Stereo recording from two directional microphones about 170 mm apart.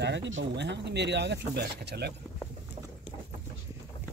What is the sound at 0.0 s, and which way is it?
Speech, 90° right.